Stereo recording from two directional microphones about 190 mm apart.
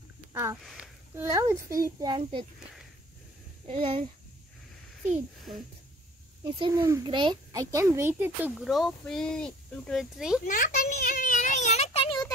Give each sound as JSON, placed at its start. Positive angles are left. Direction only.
{"t": 0.3, "sound": "sniff", "side_deg": -15}
{"t": 0.7, "sound": "a sound", "side_deg": -5}
{"t": 1.2, "sound": "a child's voice", "side_deg": -15}
{"t": 3.6, "sound": "a child's voice", "side_deg": -30}
{"t": 6.5, "sound": "a child's voice", "side_deg": -25}
{"t": 10.4, "sound": "a sound", "side_deg": 45}